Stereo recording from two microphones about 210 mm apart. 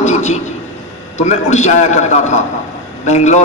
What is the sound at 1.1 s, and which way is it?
A man's voice, 35° left (ahead or behind).